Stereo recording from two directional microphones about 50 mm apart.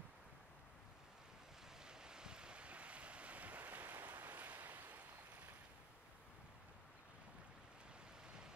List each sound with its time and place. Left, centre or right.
1.9 s waves: centre; by 4.9 s right